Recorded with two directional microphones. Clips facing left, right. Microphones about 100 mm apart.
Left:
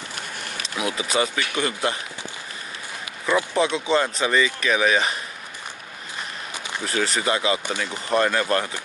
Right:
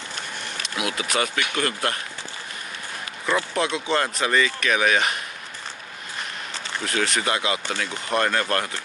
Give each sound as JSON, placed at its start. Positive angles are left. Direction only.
{"t": 0.6, "sound": "speech", "side_deg": 30}
{"t": 1.5, "sound": "speech", "side_deg": 5}
{"t": 3.3, "sound": "speech", "side_deg": 10}
{"t": 3.6, "sound": "speech", "side_deg": 30}
{"t": 3.9, "sound": "speech", "side_deg": 5}
{"t": 6.8, "sound": "speech", "side_deg": 15}
{"t": 7.6, "sound": "speech", "side_deg": 10}